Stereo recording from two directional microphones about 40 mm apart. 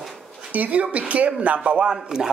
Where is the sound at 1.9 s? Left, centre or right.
Centre.